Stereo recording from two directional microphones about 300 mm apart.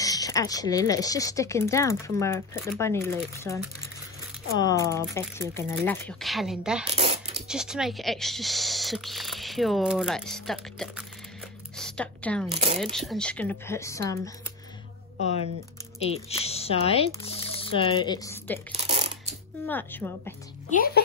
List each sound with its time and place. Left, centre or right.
0.0 s speech: centre
7.0 s a sound: centre
7.4 s speech: centre
11.7 s music: centre
12.8 s speech: centre
16.0 s speech: centre
18.7 s shuffling cards: right
19.6 s speech: centre
20.7 s speech: left